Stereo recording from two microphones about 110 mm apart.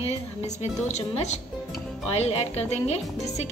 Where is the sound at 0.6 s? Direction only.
90° left.